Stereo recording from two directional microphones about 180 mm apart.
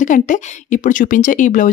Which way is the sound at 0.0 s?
45° left (ahead or behind).